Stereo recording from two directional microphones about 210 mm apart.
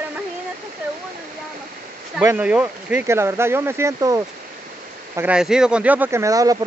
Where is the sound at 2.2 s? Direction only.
10° right (ahead or behind).